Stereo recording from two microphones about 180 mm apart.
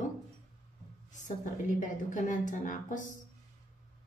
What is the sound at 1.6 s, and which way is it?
A woman's voice, 45° left (ahead or behind).